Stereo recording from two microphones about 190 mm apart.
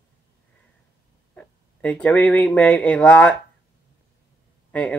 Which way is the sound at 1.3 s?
5° left (ahead or behind).